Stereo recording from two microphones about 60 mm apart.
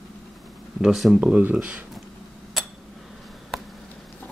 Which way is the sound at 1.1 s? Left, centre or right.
Centre.